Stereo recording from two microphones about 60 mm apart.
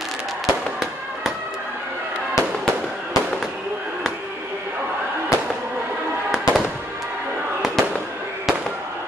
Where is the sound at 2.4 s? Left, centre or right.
Left.